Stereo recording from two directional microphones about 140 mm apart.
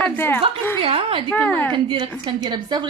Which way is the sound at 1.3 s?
10° left (ahead or behind).